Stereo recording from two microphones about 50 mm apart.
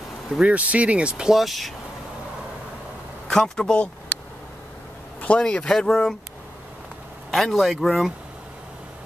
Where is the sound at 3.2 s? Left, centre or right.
Centre.